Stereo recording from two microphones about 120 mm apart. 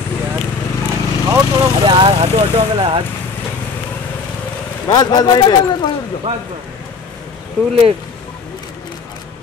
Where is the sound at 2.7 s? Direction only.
50° right (ahead or behind).